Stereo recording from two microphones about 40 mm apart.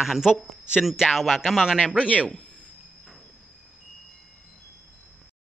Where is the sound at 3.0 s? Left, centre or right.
Centre.